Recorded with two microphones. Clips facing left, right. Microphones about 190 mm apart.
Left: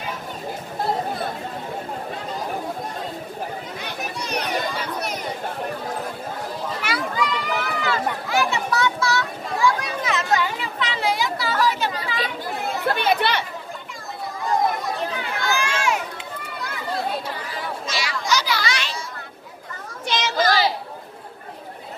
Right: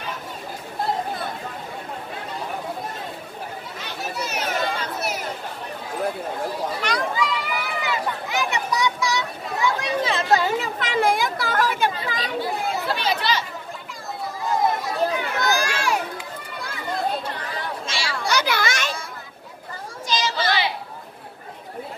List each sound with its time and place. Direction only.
4.2 s children playing: 5° right (ahead or behind)
6.8 s children playing: 5° left (ahead or behind); by 11.9 s 50° right (ahead or behind)
12.8 s chatter: 55° left (ahead or behind)
14.4 s chatter: centre (ahead or behind)
15.0 s a sound: 40° right (ahead or behind)
17.8 s chatter: 30° right (ahead or behind)
18.2 s a sound: 55° right (ahead or behind)
20.1 s chatter: 60° left (ahead or behind); by 20.7 s 40° left (ahead or behind)